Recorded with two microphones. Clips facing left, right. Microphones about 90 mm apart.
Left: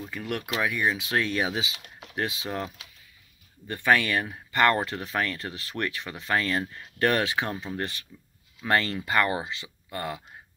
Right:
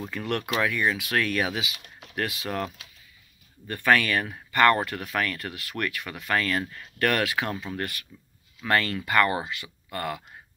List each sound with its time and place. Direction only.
0.1 s speech: 10° left (ahead or behind)